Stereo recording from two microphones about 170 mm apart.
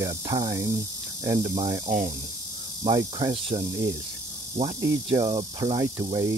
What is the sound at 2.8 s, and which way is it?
Speech, 30° right (ahead or behind).